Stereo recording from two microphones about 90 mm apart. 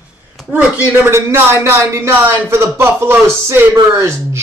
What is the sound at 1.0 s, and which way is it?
A man's voice, 25° right (ahead or behind).